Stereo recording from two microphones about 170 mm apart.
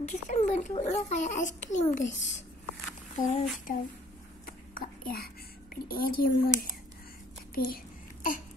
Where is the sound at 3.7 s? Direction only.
50° left (ahead or behind).